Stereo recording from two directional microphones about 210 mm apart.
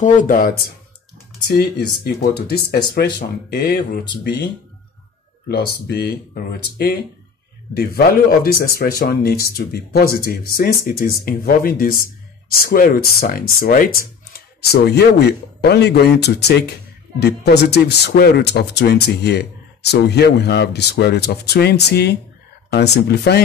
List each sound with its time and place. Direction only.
0.0 s speech: 40° left (ahead or behind)
5.5 s speech: 50° left (ahead or behind)